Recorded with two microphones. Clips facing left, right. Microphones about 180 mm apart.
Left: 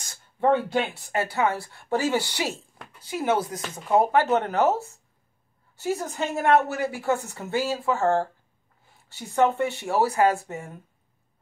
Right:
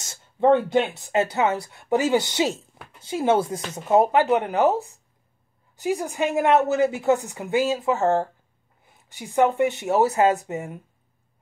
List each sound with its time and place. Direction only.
0.0 s speech: 25° right (ahead or behind)